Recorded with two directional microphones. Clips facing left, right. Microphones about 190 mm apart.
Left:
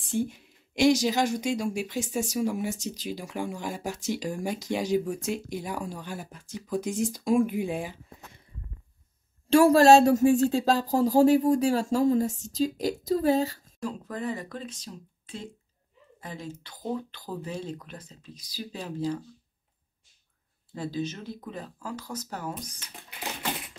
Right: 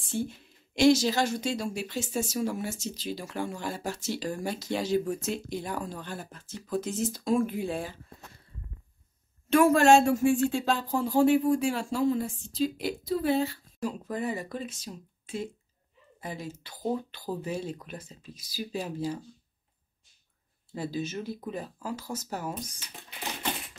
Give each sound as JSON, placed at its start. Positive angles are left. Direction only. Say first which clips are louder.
{"t": 0.0, "sound": "speech", "louder": "left 3 dB", "side_deg": 15}
{"t": 9.5, "sound": "speech", "louder": "left 3 dB", "side_deg": 35}
{"t": 13.8, "sound": "speech", "louder": "right 1 dB", "side_deg": -10}
{"t": 20.7, "sound": "speech", "louder": "even", "side_deg": -10}